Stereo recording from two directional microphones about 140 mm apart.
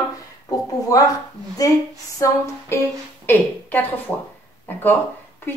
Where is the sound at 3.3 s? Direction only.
15° left (ahead or behind).